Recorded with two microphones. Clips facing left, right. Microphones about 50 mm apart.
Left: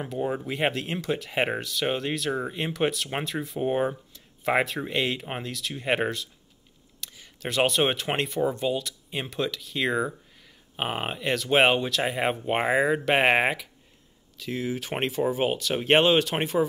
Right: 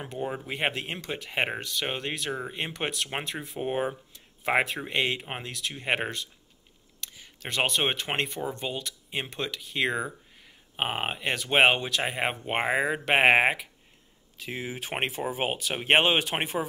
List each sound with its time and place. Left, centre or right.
0.0 s speech: centre